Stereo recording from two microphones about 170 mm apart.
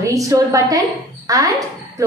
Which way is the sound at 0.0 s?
20° right (ahead or behind).